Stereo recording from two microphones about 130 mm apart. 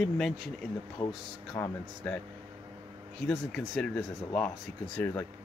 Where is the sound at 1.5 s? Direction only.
10° left (ahead or behind).